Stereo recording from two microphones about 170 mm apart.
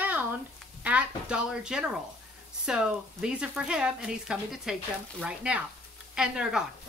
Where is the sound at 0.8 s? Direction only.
5° right (ahead or behind).